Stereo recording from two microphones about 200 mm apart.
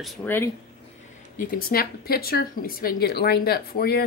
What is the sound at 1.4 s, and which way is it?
Speech, 45° left (ahead or behind).